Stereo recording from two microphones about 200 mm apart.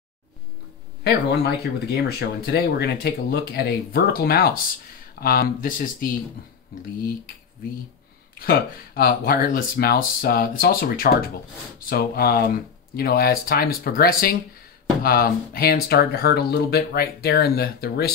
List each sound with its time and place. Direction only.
1.6 s speech: 55° left (ahead or behind)
8.4 s speech: 45° left (ahead or behind)